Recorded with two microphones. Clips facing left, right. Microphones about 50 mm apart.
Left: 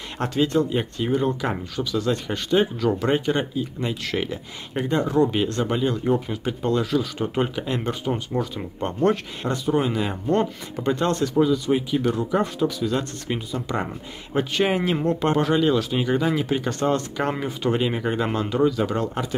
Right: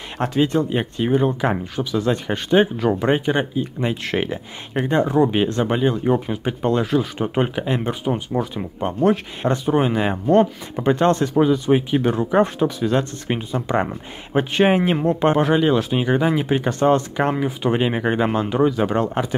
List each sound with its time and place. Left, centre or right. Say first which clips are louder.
0.4 s speech: right 2 dB; right
9.4 s speech: right 5 dB; right
17.3 s speech: right 4 dB; centre
17.6 s speech: right 3 dB; right